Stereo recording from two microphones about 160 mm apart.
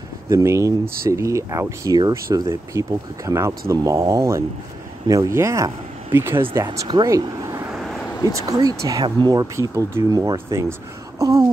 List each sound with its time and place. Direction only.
0.3 s speech: 20° right (ahead or behind)
7.7 s vehicle: centre (ahead or behind)
8.3 s speech: 20° right (ahead or behind)